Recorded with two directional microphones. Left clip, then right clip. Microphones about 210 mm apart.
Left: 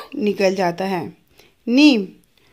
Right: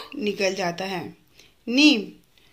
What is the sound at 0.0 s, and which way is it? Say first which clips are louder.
A woman's voice: left 6 dB; 45° left (ahead or behind).